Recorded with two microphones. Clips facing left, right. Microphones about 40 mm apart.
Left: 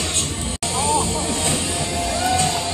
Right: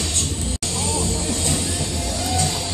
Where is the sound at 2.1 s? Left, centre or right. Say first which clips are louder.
Left 5 dB; left.